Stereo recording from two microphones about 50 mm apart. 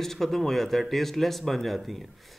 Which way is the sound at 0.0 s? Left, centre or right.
Centre.